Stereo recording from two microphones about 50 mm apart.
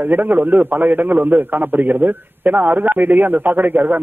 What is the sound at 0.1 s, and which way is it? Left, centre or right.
A man's voice, right.